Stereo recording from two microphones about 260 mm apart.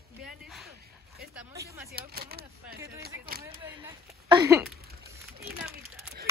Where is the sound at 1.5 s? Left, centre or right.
Centre.